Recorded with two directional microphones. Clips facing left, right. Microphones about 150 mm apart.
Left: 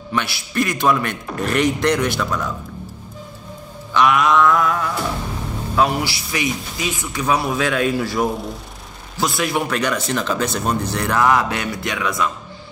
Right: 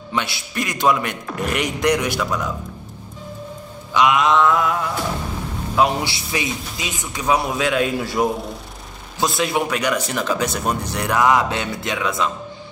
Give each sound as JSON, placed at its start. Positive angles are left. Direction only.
{"t": 0.1, "sound": "speech", "side_deg": -20}
{"t": 3.9, "sound": "a man's voice", "side_deg": -20}